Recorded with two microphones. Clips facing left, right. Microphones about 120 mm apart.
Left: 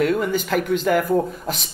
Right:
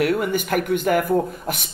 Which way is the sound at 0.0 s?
10° right (ahead or behind).